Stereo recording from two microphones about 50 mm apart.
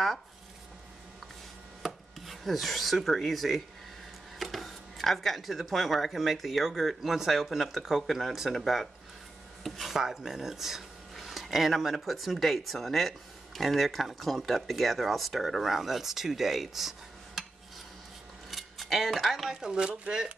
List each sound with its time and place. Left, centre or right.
1.8 s rub: centre
4.4 s speech: centre
17.4 s a sound: centre
18.5 s cutlery: centre
19.5 s speech: centre